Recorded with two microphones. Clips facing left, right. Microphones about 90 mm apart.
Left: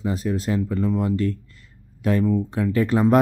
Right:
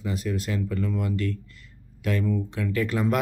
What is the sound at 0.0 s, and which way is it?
Speech, 35° left (ahead or behind).